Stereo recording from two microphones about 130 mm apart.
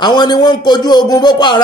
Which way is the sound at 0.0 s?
35° left (ahead or behind).